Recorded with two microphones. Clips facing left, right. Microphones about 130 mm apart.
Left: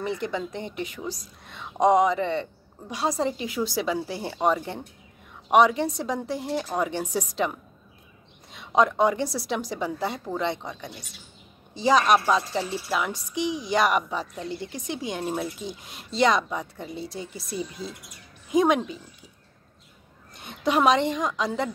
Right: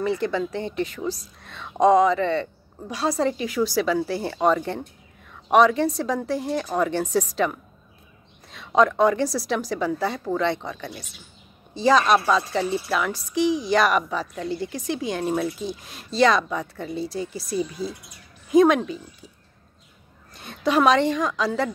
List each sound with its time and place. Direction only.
0.0 s a woman's voice: 20° left (ahead or behind)
20.3 s a woman's voice: 20° left (ahead or behind)